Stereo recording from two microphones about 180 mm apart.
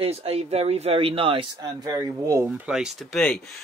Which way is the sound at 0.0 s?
35° right (ahead or behind).